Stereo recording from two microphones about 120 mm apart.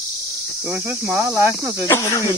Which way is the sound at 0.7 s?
20° right (ahead or behind).